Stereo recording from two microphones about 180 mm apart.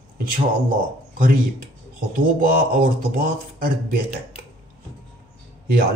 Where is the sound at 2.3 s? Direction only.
50° right (ahead or behind).